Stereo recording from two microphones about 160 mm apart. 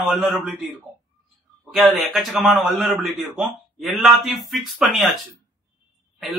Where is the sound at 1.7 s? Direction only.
Centre (ahead or behind).